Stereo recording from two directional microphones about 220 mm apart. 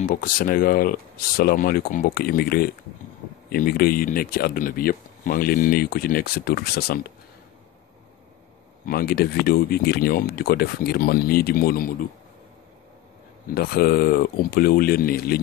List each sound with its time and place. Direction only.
0.0 s speech: 40° left (ahead or behind)
8.8 s speech: 45° left (ahead or behind)
13.6 s speech: 45° left (ahead or behind)